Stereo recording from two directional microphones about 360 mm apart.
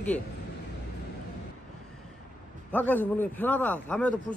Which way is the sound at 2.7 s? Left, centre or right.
Centre.